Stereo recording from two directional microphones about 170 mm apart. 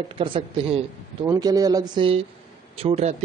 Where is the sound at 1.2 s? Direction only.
20° right (ahead or behind).